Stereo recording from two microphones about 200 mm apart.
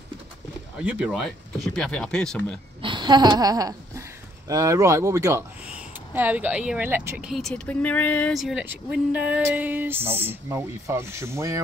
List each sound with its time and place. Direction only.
0.7 s speech: 5° right (ahead or behind)
2.8 s a woman's voice: 25° right (ahead or behind)